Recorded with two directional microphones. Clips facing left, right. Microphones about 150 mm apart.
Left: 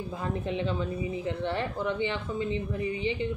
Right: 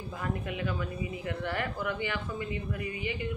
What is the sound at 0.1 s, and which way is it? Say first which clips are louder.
A woman's voice: left 2 dB; 25° left (ahead or behind).